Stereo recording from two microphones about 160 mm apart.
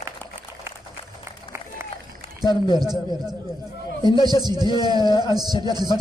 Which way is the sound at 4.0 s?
30° left (ahead or behind).